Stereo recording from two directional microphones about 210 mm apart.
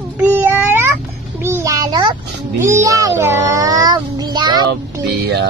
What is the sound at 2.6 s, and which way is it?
Child singing, 15° right (ahead or behind).